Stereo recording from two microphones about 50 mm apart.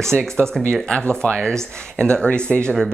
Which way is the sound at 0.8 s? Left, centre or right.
Left.